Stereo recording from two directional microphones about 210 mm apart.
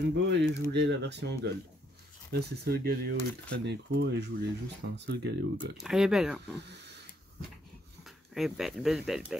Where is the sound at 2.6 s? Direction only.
45° right (ahead or behind).